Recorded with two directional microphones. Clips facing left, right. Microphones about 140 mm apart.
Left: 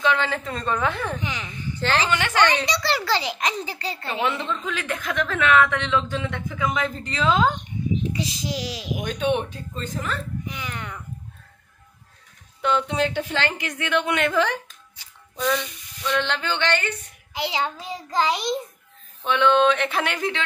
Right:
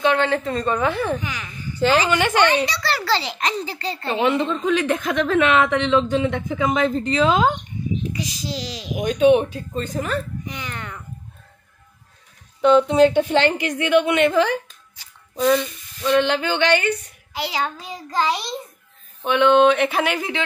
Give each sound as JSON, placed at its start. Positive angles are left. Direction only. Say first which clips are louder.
{"t": 0.0, "sound": "a sound", "louder": "right 4 dB", "side_deg": -55}
{"t": 0.3, "sound": "a woman's voice", "louder": "right 5 dB", "side_deg": 0}
{"t": 1.2, "sound": "a child's voice", "louder": "even", "side_deg": 20}
{"t": 1.8, "sound": "a woman's voice", "louder": "right 5 dB", "side_deg": -10}
{"t": 2.8, "sound": "a child's voice", "louder": "right 1 dB", "side_deg": 15}
{"t": 4.1, "sound": "speech", "louder": "right 6 dB", "side_deg": -20}
{"t": 8.1, "sound": "a child's voice", "louder": "even", "side_deg": 25}
{"t": 8.5, "sound": "a child's voice", "louder": "even", "side_deg": 10}
{"t": 10.4, "sound": "a child's voice", "louder": "right 1 dB", "side_deg": 5}
{"t": 12.6, "sound": "a woman's voice", "louder": "right 9 dB", "side_deg": -20}
{"t": 15.3, "sound": "speech", "louder": "right 6 dB", "side_deg": -25}
{"t": 16.3, "sound": "a woman's voice", "louder": "right 6 dB", "side_deg": -10}
{"t": 17.3, "sound": "a child's voice", "louder": "right 1 dB", "side_deg": 20}
{"t": 19.2, "sound": "a woman's voice", "louder": "right 4 dB", "side_deg": -10}